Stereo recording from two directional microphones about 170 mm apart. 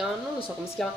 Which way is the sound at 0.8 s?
Centre (ahead or behind).